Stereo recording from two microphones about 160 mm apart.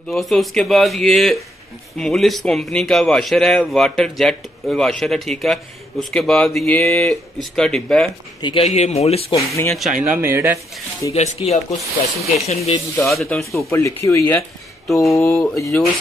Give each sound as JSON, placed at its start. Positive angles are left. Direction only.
{"t": 0.1, "sound": "a man's voice", "side_deg": 0}
{"t": 8.4, "sound": "speech", "side_deg": 30}
{"t": 8.7, "sound": "speech", "side_deg": 40}
{"t": 9.4, "sound": "speech", "side_deg": 20}
{"t": 9.7, "sound": "a man's voice", "side_deg": 0}
{"t": 10.1, "sound": "speech", "side_deg": -15}
{"t": 11.1, "sound": "speech", "side_deg": 45}
{"t": 11.7, "sound": "a man's voice", "side_deg": 0}
{"t": 12.4, "sound": "speech", "side_deg": 40}
{"t": 12.9, "sound": "a man's voice", "side_deg": 5}
{"t": 13.7, "sound": "speech", "side_deg": 15}
{"t": 14.9, "sound": "a man's voice", "side_deg": 0}